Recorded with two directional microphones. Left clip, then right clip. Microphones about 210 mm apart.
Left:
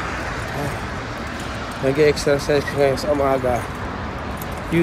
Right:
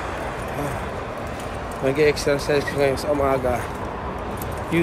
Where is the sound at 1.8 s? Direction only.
10° right (ahead or behind).